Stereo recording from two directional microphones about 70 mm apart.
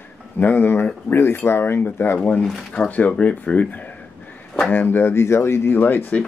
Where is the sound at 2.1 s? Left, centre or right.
Left.